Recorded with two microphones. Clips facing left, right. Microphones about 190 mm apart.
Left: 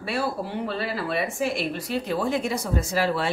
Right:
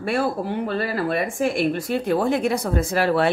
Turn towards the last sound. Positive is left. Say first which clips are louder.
# right 5 dB
turn(degrees=-60)  # may be behind; listen again after turning